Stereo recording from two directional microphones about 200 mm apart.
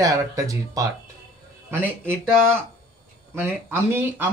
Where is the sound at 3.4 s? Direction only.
10° right (ahead or behind).